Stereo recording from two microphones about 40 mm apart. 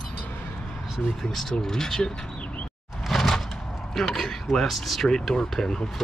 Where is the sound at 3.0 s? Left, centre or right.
Centre.